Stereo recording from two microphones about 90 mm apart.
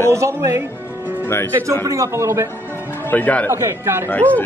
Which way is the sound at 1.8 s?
35° right (ahead or behind).